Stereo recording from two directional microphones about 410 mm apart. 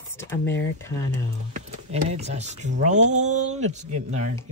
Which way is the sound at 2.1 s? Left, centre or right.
Centre.